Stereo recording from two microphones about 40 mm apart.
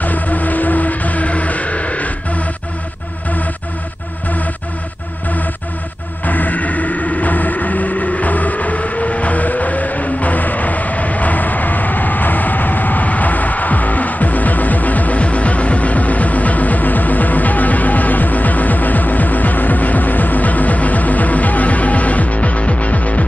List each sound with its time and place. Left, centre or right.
0.0 s music: left
6.2 s music: left